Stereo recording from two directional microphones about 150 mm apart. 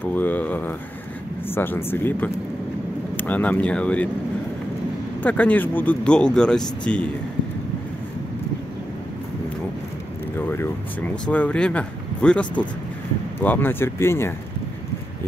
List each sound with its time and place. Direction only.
0.1 s speech: 10° left (ahead or behind)
5.2 s speech: 10° left (ahead or behind)
10.4 s speech: 15° left (ahead or behind)